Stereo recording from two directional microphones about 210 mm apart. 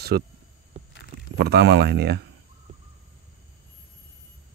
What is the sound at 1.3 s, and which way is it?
Speech, 50° right (ahead or behind).